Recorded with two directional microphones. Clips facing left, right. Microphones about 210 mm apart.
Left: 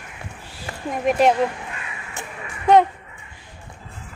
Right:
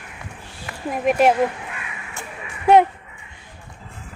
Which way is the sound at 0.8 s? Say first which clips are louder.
Right 1 dB; centre (ahead or behind).